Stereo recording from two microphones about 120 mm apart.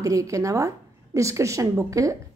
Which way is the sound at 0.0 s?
25° right (ahead or behind).